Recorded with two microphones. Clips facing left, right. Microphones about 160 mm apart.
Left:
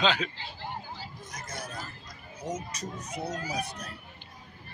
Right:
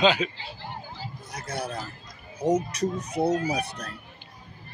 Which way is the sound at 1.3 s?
65° right (ahead or behind).